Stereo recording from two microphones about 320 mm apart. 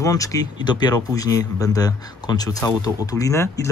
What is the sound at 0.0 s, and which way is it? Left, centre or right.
Speech, centre.